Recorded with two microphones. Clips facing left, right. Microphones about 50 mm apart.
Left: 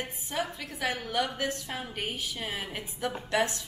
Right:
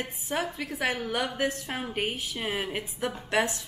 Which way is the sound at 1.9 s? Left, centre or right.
Centre.